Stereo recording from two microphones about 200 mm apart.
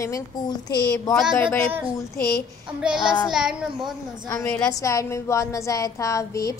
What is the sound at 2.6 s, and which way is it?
A child's voice, 5° right (ahead or behind).